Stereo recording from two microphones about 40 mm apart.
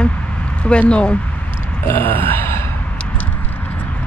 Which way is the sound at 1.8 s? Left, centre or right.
Left.